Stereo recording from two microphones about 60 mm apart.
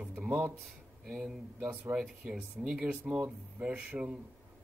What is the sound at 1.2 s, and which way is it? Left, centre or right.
Speech, centre.